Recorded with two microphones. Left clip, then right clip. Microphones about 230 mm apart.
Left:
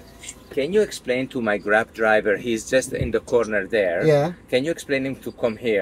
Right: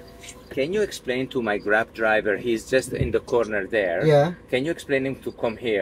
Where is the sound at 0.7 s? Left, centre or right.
Left.